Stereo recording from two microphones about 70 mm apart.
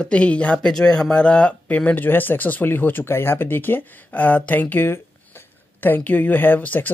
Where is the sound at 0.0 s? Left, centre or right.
Centre.